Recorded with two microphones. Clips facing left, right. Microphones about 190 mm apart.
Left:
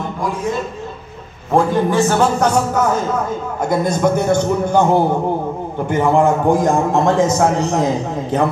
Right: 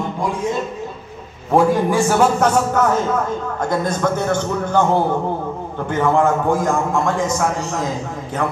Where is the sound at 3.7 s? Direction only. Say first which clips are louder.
Left 4 dB; 10° left (ahead or behind).